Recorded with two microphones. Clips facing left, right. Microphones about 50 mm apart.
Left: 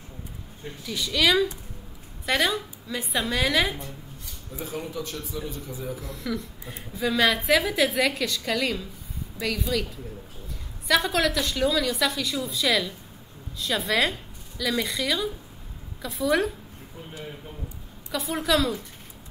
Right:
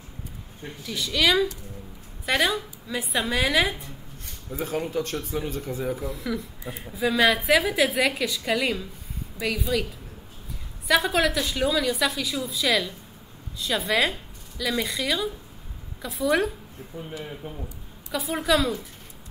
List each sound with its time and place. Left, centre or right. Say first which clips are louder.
0.8 s a woman's voice: even; centre
4.5 s speech: right 5 dB; right
5.9 s a woman's voice: right 2 dB; centre
10.9 s a woman's voice: right 1 dB; centre
18.1 s a woman's voice: right 1 dB; centre